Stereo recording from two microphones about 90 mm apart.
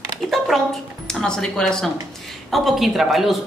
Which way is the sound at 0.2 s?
Centre (ahead or behind).